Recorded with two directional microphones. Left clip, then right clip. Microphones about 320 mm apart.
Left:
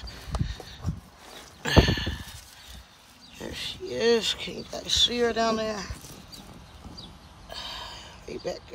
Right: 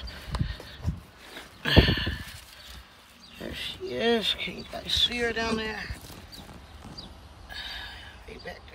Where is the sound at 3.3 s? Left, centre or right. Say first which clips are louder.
Left 1 dB; centre.